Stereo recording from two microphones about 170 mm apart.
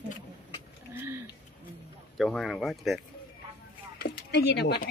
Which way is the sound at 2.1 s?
Centre (ahead or behind).